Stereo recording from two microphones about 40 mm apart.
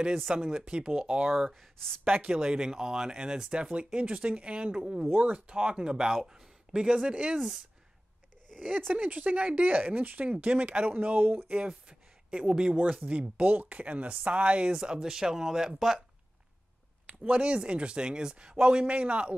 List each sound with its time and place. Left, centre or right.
0.3 s speech: right
1.3 s speech: centre; by 5.0 s right
5.1 s speech: right
5.5 s speech: right
8.5 s speech: right
11.4 s speech: right
13.4 s speech: right
14.7 s speech: right
17.1 s speech: right